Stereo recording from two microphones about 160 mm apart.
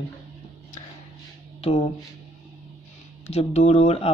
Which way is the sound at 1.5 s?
40° left (ahead or behind).